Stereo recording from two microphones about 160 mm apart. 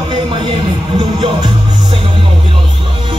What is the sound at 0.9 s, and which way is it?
Music, 25° right (ahead or behind).